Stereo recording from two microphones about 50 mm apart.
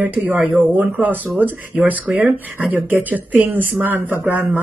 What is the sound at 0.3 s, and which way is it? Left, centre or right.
Speech, right.